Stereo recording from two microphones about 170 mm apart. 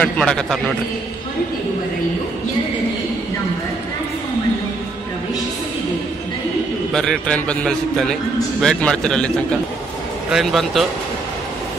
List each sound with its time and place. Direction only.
0.0 s a man's voice: 5° left (ahead or behind)
6.9 s a man's voice: 5° left (ahead or behind)
10.3 s a man's voice: centre (ahead or behind)